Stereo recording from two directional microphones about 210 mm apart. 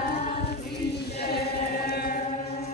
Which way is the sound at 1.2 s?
50° left (ahead or behind).